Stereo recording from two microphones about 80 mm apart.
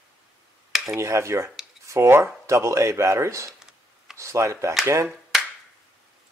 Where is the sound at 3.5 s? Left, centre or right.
Centre.